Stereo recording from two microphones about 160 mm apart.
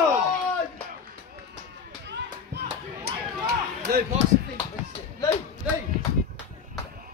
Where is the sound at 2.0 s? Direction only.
90° right.